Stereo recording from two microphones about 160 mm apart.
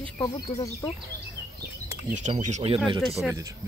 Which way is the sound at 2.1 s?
50° right (ahead or behind).